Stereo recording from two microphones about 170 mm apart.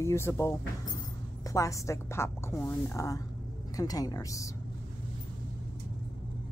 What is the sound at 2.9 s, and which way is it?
Speech, 20° left (ahead or behind).